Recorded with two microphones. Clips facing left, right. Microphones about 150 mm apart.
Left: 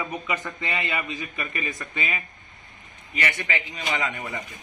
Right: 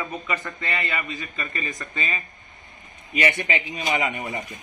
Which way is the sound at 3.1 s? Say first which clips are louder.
Right 4 dB; 20° right (ahead or behind).